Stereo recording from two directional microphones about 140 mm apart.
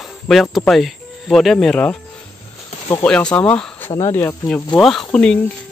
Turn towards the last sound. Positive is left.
turn(degrees=5)  # may be behind; listen again after turning